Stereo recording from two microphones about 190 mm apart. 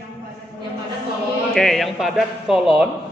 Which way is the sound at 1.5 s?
Centre (ahead or behind).